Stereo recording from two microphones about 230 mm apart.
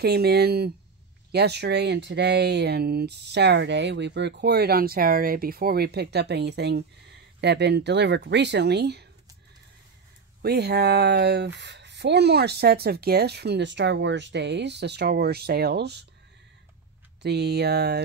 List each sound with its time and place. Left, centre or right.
0.0 s speech: right
10.4 s speech: right
17.2 s speech: right